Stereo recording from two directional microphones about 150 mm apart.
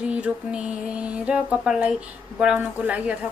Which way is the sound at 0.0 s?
10° right (ahead or behind).